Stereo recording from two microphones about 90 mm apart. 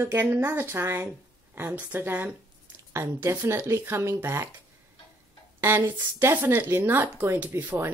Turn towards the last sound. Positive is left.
turn(degrees=-25)  # may be behind; listen again after turning